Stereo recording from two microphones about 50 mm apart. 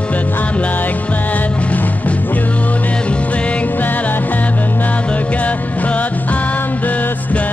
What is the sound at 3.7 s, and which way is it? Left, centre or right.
Music, left.